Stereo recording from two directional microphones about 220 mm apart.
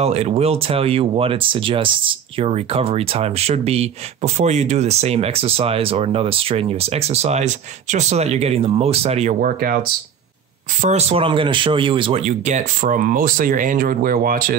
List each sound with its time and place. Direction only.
0.0 s speech: 30° right (ahead or behind)
10.8 s speech: 30° right (ahead or behind)